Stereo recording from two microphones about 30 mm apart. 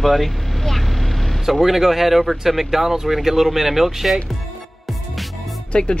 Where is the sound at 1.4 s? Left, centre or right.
Centre.